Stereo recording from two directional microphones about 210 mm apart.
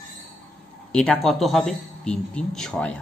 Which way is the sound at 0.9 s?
5° left (ahead or behind).